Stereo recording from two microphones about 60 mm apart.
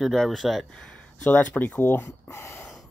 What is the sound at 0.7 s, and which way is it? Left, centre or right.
Speech, left.